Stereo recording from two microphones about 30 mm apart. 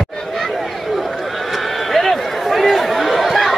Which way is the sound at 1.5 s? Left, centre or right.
Centre.